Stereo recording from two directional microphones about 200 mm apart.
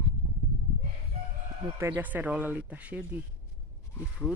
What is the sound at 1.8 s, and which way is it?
Speech, 10° right (ahead or behind).